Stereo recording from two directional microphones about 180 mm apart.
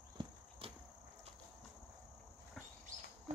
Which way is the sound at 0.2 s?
30° right (ahead or behind).